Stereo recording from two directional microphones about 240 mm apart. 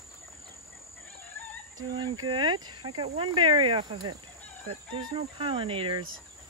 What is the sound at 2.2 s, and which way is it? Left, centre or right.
Speech, centre.